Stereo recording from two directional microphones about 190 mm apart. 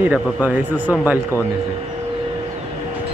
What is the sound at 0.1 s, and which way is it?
A man's voice, 10° right (ahead or behind).